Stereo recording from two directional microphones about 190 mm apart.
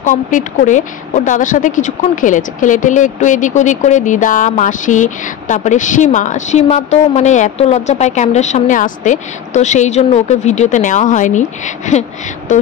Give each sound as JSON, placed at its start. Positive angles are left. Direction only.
{"t": 0.0, "sound": "a woman's voice", "side_deg": 40}